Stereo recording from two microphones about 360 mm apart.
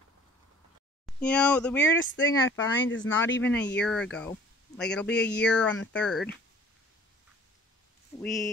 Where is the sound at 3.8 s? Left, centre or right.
Centre.